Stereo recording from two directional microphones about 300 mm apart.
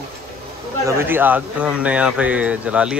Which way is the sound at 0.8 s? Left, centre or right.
Centre.